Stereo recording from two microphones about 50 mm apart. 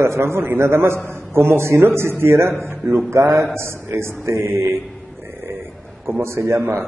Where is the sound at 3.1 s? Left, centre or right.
Right.